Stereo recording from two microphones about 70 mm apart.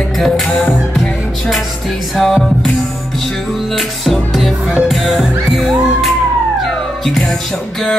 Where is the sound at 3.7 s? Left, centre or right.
Centre.